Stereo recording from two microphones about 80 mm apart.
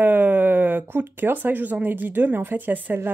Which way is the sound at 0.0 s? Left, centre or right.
Right.